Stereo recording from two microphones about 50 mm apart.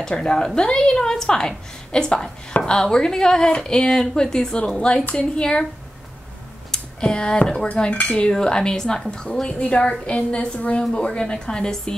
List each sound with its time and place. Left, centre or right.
0.0 s a woman's voice: centre
6.7 s speech: centre
9.5 s a woman's voice: left